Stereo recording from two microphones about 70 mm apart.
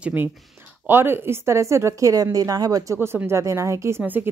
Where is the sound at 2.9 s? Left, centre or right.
Right.